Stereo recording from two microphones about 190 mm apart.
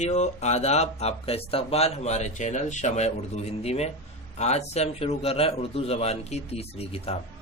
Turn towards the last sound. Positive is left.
turn(degrees=30)  # may be behind; listen again after turning